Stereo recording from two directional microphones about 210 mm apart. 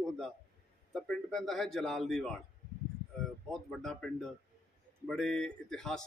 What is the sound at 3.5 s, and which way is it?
A man's voice, centre (ahead or behind).